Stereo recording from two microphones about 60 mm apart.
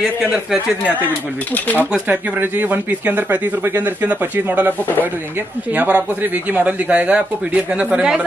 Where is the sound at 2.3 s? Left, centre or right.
Right.